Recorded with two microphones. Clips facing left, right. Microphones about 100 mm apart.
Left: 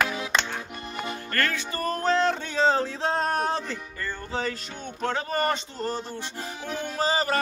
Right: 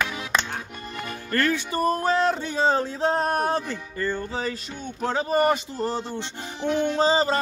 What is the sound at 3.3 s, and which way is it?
Music, 50° right (ahead or behind).